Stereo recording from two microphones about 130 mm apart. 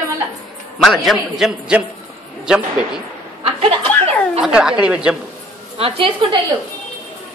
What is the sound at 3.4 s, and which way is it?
Chuckle, 45° right (ahead or behind).